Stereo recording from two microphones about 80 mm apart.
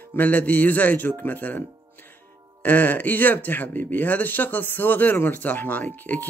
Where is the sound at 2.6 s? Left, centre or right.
Left.